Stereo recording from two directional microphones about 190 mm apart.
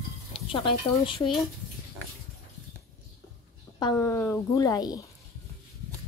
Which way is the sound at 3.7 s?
15° left (ahead or behind).